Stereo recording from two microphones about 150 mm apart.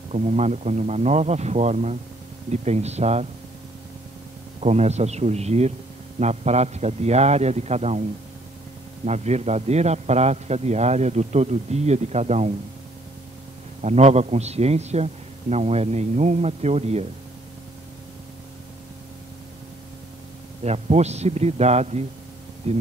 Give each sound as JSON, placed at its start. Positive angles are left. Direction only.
{"t": 0.1, "sound": "a man's voice", "side_deg": -45}
{"t": 4.6, "sound": "a man's voice", "side_deg": -45}
{"t": 9.0, "sound": "a man's voice", "side_deg": -45}
{"t": 13.7, "sound": "a man's voice", "side_deg": -45}
{"t": 20.6, "sound": "a man's voice", "side_deg": -45}